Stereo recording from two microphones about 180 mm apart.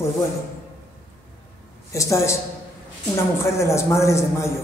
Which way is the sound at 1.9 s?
15° left (ahead or behind).